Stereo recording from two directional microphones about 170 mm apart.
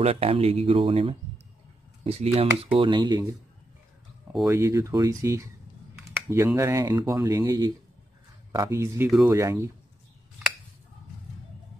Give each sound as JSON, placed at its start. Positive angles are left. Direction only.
{"t": 0.0, "sound": "speech", "side_deg": -35}
{"t": 4.5, "sound": "speech", "side_deg": -15}